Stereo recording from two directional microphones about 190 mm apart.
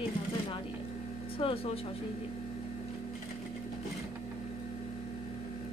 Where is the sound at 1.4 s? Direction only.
30° left (ahead or behind).